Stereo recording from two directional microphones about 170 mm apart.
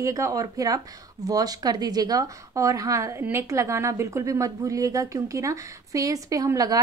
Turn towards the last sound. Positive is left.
turn(degrees=-20)  # may be behind; listen again after turning